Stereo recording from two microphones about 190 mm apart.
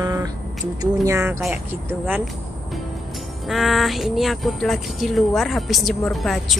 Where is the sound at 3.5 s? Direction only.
Centre (ahead or behind).